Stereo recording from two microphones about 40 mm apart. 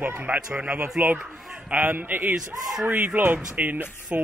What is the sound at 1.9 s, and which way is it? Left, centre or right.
Speech, right.